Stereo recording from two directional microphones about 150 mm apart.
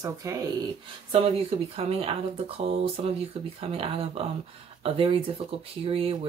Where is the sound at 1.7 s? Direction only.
40° right (ahead or behind).